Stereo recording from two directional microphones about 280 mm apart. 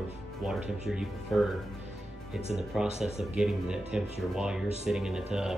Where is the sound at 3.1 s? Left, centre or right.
Centre.